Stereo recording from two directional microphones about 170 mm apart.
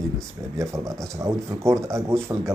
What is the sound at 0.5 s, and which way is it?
Speech, 15° right (ahead or behind).